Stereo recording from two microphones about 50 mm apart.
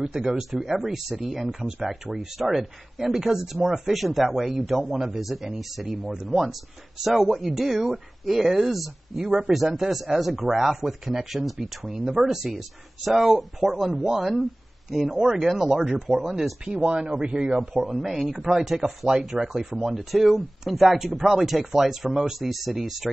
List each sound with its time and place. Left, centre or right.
0.0 s speech: centre
17.7 s speech: centre